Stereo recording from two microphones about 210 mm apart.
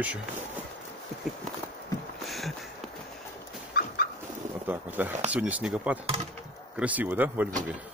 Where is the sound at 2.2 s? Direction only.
Centre (ahead or behind).